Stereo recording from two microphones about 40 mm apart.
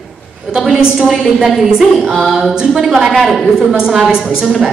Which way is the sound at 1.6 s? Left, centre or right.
Centre.